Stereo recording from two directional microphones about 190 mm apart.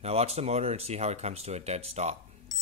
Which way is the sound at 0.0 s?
35° right (ahead or behind).